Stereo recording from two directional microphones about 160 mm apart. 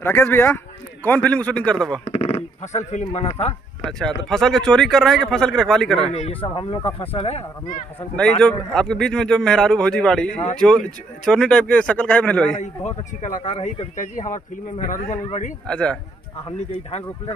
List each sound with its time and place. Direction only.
0.0 s a man's voice: 15° left (ahead or behind)
2.0 s speech: 40° left (ahead or behind)
4.0 s a man's voice: 5° left (ahead or behind)
6.1 s speech: 35° left (ahead or behind)
8.2 s a man's voice: 5° left (ahead or behind)
12.6 s a man's voice: 50° left (ahead or behind)
15.6 s a man's voice: 5° left (ahead or behind)
16.4 s speech: 35° left (ahead or behind)